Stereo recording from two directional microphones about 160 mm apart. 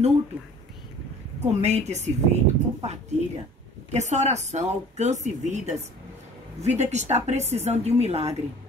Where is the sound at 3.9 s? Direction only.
45° right (ahead or behind).